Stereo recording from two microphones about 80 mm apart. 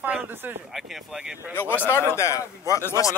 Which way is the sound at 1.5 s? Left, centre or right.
Left.